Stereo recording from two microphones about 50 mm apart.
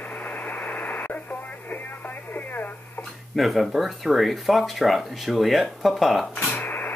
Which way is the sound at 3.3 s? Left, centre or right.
Centre.